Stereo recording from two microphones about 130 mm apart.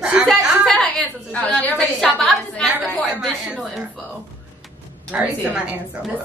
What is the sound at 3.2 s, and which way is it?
Speech, 5° right (ahead or behind).